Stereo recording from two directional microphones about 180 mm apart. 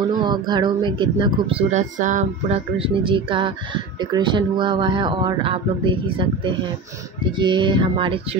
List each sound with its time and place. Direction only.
0.1 s speech: 25° right (ahead or behind)